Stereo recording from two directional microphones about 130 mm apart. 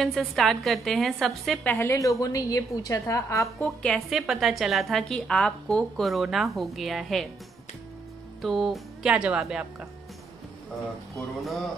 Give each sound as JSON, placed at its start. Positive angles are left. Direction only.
{"t": 0.0, "sound": "a woman's voice", "side_deg": 0}
{"t": 1.6, "sound": "a woman's voice", "side_deg": 15}
{"t": 3.5, "sound": "a woman's voice", "side_deg": 5}
{"t": 8.4, "sound": "a woman's voice", "side_deg": 0}